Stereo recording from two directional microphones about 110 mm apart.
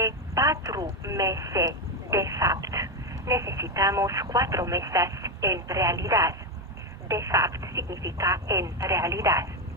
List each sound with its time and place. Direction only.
0.0 s telephone: 30° right (ahead or behind)
1.0 s speech: 30° right (ahead or behind)